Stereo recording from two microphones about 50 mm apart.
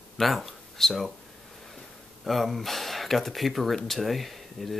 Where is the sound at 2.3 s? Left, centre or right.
Centre.